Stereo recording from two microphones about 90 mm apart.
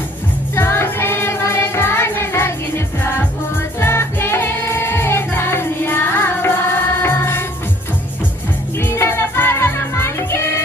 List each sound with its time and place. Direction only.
0.6 s music: 30° left (ahead or behind)
3.8 s music: 30° left (ahead or behind)
8.9 s music: 30° left (ahead or behind)